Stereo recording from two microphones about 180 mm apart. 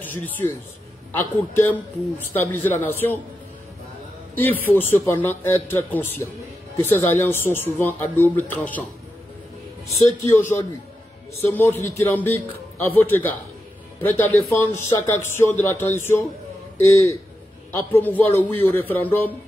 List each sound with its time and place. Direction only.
0.0 s speech: 10° left (ahead or behind)
4.4 s speech: 10° left (ahead or behind)
9.8 s a man's voice: 35° left (ahead or behind)
10.3 s speech: 15° left (ahead or behind)